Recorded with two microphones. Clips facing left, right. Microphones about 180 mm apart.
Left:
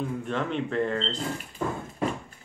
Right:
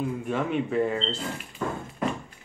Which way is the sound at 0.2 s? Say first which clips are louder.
Right 2 dB; 10° right (ahead or behind).